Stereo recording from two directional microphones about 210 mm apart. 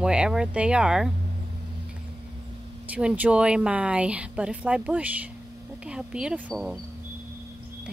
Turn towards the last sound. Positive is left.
turn(degrees=0)  # may be behind; listen again after turning